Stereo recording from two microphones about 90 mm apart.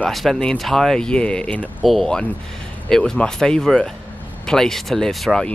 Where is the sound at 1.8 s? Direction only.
Centre (ahead or behind).